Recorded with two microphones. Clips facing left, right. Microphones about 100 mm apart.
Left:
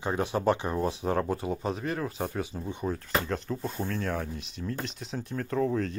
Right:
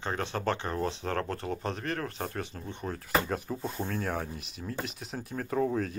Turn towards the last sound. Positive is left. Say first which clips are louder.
# left 1 dB
turn(degrees=-5)  # may be behind; listen again after turning